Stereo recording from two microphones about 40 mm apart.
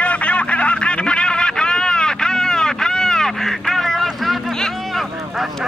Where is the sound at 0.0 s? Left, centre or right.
Left; by 4.4 s centre.